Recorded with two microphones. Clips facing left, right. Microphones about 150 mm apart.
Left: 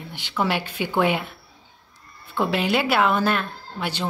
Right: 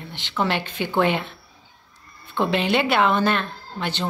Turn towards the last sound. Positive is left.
turn(degrees=10)  # may be behind; listen again after turning